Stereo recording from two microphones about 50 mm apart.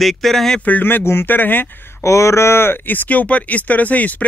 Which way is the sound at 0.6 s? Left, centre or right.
Left.